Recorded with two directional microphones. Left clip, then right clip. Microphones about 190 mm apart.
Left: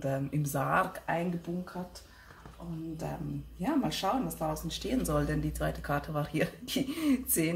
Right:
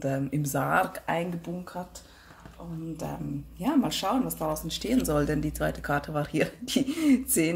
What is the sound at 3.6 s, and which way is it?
Speech, 40° right (ahead or behind).